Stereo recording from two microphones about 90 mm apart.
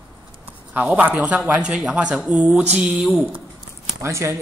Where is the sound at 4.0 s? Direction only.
30° right (ahead or behind).